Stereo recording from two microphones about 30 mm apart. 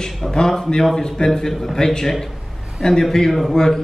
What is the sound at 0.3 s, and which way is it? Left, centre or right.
A man's voice, left.